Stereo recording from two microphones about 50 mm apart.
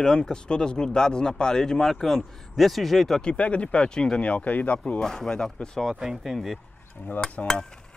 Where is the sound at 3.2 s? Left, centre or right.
Left.